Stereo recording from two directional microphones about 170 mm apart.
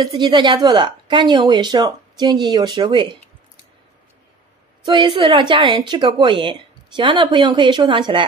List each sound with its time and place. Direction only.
0.0 s speech: 25° right (ahead or behind)
4.8 s speech: 30° right (ahead or behind)